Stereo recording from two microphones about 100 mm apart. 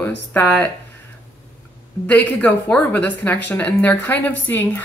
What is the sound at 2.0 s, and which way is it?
A woman's voice, 15° left (ahead or behind).